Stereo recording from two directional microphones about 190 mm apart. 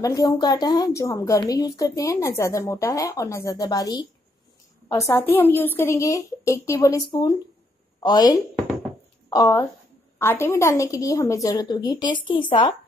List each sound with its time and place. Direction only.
0.0 s a woman's voice: 20° left (ahead or behind)